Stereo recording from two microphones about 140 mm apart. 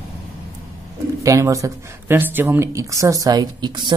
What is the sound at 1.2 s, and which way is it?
Speech, 25° right (ahead or behind).